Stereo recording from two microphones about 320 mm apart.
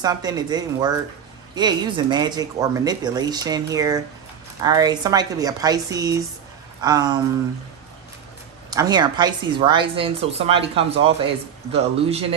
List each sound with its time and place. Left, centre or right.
0.0 s speech: centre
8.6 s speech: centre